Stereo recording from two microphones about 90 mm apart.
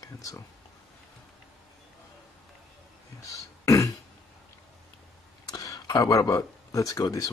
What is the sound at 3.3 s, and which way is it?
Beatboxing, 40° left (ahead or behind).